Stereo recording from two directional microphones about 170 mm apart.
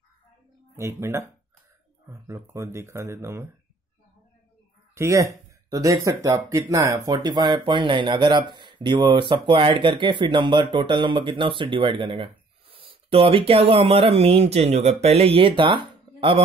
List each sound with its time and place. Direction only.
0.7 s speech: 15° right (ahead or behind)
4.9 s speech: 15° right (ahead or behind)